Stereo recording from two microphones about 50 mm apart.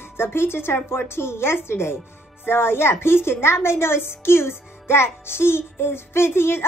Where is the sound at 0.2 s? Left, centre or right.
Left.